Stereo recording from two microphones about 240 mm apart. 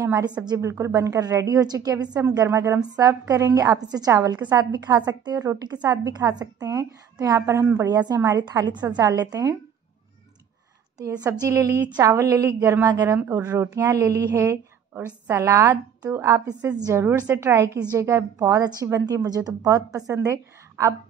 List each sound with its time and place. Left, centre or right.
0.0 s a woman's voice: centre
11.0 s a woman's voice: centre
20.2 s a sound: centre